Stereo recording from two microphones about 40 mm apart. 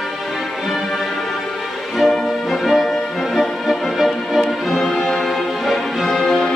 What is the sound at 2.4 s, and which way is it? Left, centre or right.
Music, centre.